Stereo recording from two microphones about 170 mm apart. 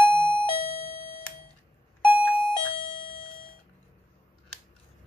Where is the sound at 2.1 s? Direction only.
10° right (ahead or behind).